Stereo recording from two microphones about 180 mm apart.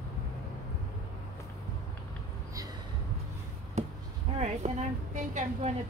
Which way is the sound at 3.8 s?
40° right (ahead or behind).